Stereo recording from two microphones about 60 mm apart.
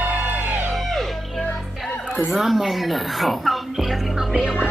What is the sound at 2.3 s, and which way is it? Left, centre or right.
Speech, centre.